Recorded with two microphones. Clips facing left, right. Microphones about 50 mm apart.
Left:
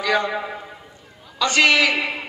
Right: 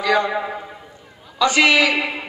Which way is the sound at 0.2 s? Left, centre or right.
Centre.